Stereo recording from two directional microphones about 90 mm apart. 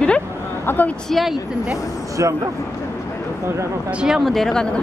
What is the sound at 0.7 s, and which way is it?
Speech, 20° left (ahead or behind).